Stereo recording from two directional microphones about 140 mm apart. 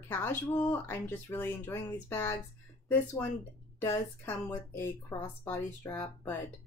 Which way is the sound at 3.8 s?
15° left (ahead or behind).